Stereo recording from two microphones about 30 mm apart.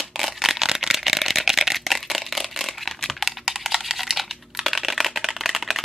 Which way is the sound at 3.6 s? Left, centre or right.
Centre.